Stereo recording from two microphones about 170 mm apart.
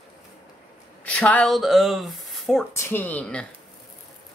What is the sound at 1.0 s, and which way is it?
Speech, 10° left (ahead or behind).